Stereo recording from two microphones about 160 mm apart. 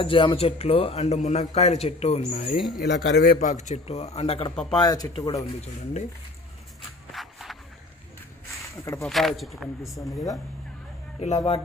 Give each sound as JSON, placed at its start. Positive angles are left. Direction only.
{"t": 0.0, "sound": "a man's voice", "side_deg": 35}
{"t": 2.9, "sound": "a man's voice", "side_deg": 85}
{"t": 4.7, "sound": "speech", "side_deg": 25}
{"t": 7.1, "sound": "a sound", "side_deg": 0}
{"t": 9.0, "sound": "speech", "side_deg": 0}
{"t": 9.9, "sound": "speech", "side_deg": 20}
{"t": 11.1, "sound": "a man's voice", "side_deg": 40}